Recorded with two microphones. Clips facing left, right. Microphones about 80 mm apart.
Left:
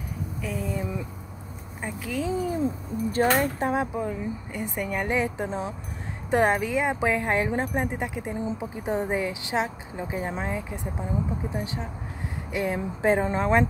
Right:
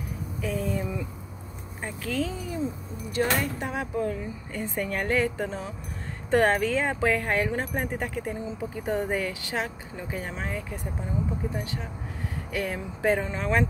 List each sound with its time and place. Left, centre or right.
0.4 s speech: centre
2.3 s a sound: left
3.1 s speech: left